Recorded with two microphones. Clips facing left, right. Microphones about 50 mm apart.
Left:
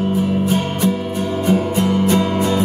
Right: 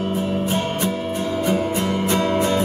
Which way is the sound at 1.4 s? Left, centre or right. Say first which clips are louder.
Left 5 dB; centre.